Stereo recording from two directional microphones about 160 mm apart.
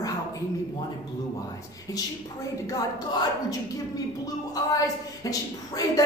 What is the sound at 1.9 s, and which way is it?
Speech, 20° left (ahead or behind).